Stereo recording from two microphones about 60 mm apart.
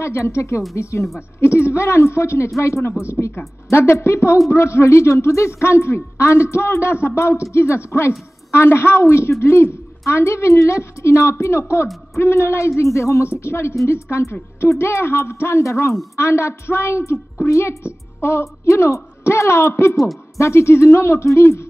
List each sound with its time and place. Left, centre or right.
0.0 s a woman's voice: left